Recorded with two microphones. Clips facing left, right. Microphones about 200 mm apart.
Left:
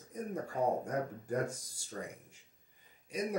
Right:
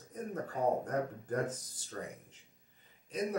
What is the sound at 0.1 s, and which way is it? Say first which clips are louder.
Speech: even; 10° left (ahead or behind).